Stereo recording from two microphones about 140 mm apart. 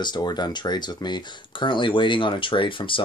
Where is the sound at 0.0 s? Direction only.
30° left (ahead or behind).